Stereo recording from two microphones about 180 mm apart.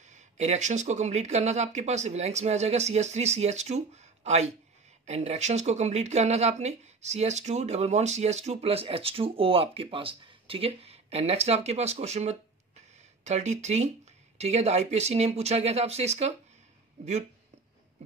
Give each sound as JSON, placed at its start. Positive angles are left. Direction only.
{"t": 0.1, "sound": "speech", "side_deg": -40}